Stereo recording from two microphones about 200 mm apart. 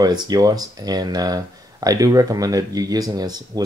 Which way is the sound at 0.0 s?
20° right (ahead or behind).